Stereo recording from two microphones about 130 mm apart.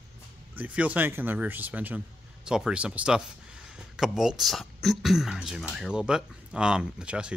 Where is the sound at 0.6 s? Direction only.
10° right (ahead or behind).